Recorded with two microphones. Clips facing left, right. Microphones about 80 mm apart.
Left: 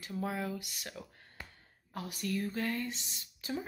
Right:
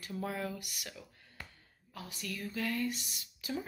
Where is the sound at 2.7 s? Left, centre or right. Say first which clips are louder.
Right 1 dB; left.